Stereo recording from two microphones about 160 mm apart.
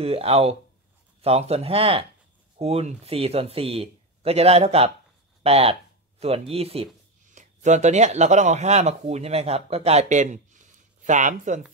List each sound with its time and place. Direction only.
0.0 s a man's voice: 40° right (ahead or behind)